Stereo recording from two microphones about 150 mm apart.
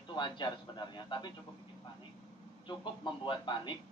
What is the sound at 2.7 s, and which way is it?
A man's voice, 30° left (ahead or behind).